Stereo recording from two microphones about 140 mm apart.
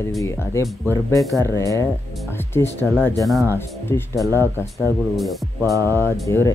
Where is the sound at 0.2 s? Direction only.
20° left (ahead or behind).